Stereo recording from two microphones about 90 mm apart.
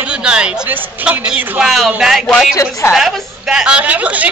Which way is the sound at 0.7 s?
20° right (ahead or behind).